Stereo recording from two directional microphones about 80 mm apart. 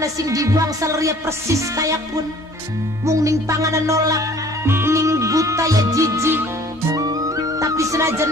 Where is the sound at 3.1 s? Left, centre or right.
Right.